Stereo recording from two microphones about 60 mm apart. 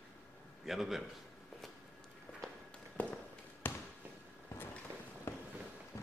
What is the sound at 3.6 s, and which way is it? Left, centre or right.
Basketball bounce, left.